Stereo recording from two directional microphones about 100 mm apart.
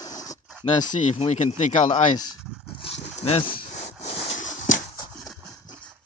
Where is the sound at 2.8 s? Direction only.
85° left.